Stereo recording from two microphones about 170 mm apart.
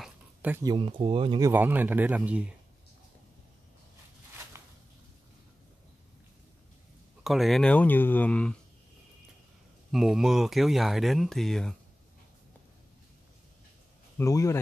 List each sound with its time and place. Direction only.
0.0 s a sound: 10° right (ahead or behind)
0.7 s speech: 30° right (ahead or behind)
1.4 s speech: 10° right (ahead or behind)
7.2 s speech: centre (ahead or behind)
9.8 s speech: centre (ahead or behind)
14.1 s speech: 20° left (ahead or behind)